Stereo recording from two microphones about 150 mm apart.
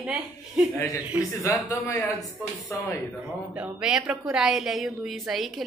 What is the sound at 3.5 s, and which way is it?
A woman's voice, 5° right (ahead or behind).